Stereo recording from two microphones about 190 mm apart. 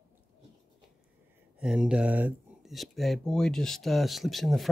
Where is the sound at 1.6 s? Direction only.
5° right (ahead or behind).